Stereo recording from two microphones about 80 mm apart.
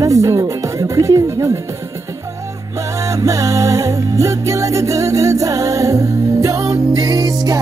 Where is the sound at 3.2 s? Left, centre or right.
Right.